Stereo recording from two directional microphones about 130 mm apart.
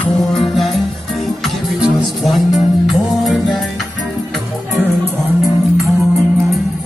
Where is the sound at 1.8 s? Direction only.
Centre (ahead or behind).